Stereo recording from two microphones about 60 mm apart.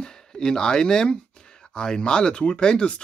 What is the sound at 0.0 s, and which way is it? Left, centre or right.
Speech, centre.